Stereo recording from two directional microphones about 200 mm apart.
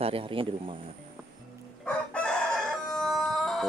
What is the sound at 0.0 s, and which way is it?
Speech, 25° right (ahead or behind).